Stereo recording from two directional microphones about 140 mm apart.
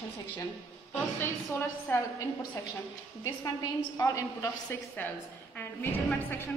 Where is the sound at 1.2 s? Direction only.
15° left (ahead or behind).